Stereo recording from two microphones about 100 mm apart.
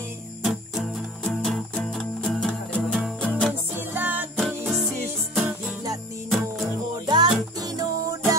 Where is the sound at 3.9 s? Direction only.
20° right (ahead or behind).